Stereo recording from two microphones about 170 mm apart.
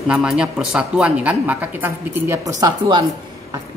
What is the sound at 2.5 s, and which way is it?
Speech, 25° right (ahead or behind).